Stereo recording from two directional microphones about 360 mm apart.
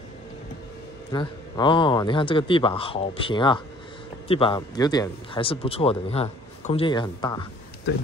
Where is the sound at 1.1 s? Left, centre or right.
Centre.